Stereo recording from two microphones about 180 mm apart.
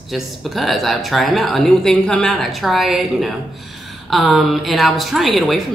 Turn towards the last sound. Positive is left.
turn(degrees=0)  # may be behind; listen again after turning